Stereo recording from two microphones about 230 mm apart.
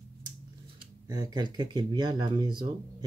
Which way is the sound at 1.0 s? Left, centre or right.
Centre.